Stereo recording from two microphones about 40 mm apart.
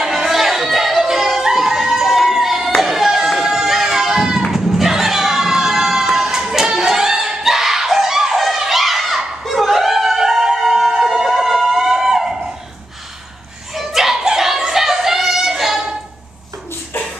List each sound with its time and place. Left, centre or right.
0.0 s music: centre
2.8 s a sound: centre
13.7 s music: centre